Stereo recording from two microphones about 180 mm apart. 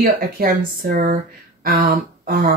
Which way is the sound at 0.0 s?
50° right (ahead or behind).